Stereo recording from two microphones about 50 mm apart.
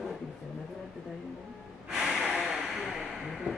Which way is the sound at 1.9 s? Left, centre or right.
Centre.